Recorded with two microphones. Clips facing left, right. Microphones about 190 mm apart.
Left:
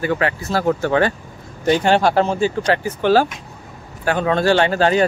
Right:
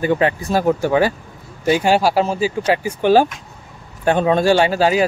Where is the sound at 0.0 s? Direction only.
20° right (ahead or behind).